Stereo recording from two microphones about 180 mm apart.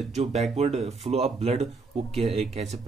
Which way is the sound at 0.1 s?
35° right (ahead or behind).